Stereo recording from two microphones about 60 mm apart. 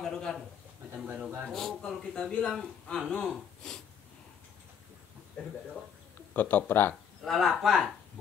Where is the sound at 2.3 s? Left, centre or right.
Left.